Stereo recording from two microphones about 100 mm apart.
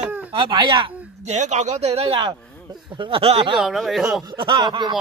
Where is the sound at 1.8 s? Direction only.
90° right.